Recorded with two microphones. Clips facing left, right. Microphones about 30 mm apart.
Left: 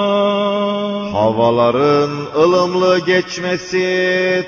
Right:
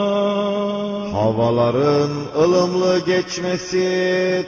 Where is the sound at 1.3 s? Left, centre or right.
Centre.